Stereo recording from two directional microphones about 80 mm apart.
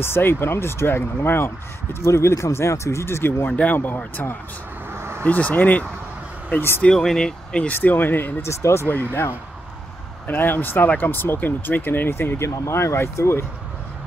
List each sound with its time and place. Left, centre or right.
0.0 s speech: left
4.9 s vehicle: right
5.2 s speech: centre
6.8 s speech: centre
7.6 s speech: left
8.8 s speech: left
10.2 s speech: left